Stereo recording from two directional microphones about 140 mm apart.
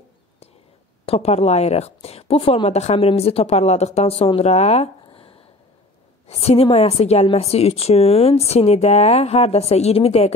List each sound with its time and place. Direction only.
1.0 s a woman's voice: 45° left (ahead or behind)